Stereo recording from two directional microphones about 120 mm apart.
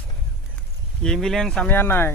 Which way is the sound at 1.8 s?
20° left (ahead or behind).